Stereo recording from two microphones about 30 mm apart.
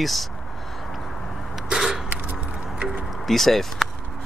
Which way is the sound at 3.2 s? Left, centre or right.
Centre.